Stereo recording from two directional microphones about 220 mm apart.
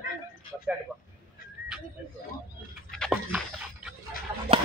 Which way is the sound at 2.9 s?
5° left (ahead or behind).